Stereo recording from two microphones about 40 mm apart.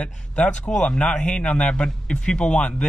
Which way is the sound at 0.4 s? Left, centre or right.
Left.